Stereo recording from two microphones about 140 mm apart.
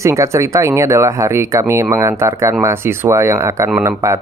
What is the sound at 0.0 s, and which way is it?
Speech, 20° right (ahead or behind).